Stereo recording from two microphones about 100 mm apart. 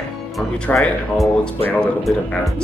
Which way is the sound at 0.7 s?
Centre (ahead or behind).